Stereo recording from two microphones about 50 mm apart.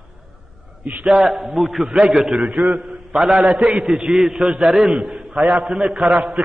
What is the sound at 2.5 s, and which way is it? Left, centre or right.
Speech, right.